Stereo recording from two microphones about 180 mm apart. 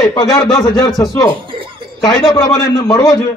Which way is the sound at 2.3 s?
20° left (ahead or behind).